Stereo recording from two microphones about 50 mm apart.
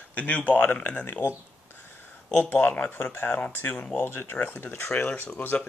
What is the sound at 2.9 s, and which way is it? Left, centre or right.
Speech, left.